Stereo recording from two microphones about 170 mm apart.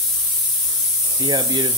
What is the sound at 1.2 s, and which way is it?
Speech, 25° right (ahead or behind).